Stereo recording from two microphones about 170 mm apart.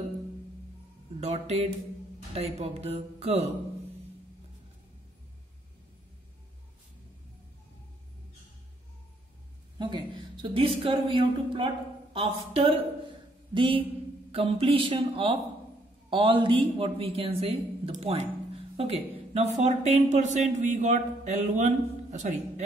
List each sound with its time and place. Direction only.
1.2 s speech: 40° right (ahead or behind)
9.8 s a woman's voice: 25° right (ahead or behind); by 22.7 s 45° right (ahead or behind)